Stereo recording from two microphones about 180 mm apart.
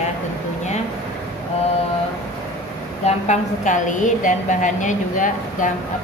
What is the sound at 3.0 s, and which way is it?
A woman's voice, 40° left (ahead or behind).